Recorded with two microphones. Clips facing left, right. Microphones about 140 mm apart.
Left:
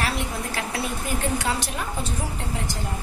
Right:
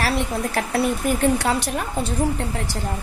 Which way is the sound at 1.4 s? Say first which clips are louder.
Right 5 dB; 60° right (ahead or behind).